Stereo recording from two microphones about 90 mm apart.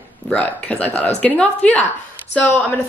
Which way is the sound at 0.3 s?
15° left (ahead or behind).